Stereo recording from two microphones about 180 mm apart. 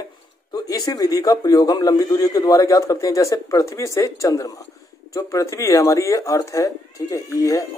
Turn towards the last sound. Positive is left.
turn(degrees=20)  # may be behind; listen again after turning